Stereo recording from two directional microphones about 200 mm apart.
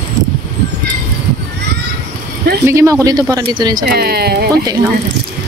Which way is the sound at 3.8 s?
50° right (ahead or behind).